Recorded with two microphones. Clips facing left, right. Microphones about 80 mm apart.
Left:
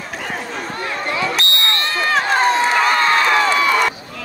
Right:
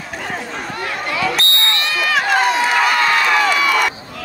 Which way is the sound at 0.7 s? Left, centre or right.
Left.